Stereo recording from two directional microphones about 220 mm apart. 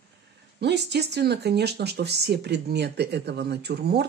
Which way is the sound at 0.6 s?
50° right (ahead or behind).